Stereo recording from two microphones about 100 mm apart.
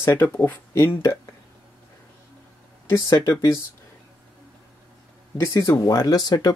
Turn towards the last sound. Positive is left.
turn(degrees=40)  # may be behind; listen again after turning